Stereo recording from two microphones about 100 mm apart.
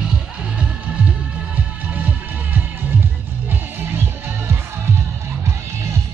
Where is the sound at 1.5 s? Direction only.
15° right (ahead or behind).